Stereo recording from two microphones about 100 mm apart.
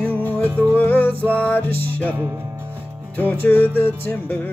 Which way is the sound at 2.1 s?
20° right (ahead or behind).